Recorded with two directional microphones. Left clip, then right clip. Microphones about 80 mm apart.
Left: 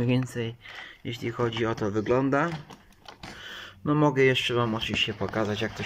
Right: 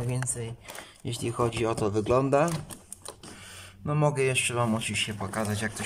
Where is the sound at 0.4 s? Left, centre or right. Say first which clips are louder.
Left 6 dB; centre.